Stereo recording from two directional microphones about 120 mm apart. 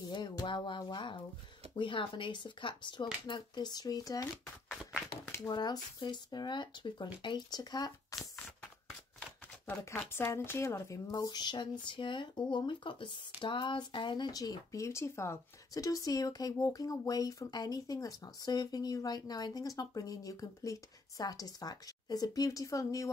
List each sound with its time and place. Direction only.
0.1 s speech: 40° left (ahead or behind)
5.5 s speech: 35° left (ahead or behind)
9.9 s speech: 20° left (ahead or behind)